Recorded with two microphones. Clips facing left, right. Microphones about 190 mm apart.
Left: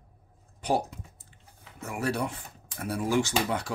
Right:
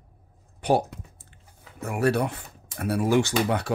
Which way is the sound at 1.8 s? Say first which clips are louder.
Right 6 dB; 65° right (ahead or behind).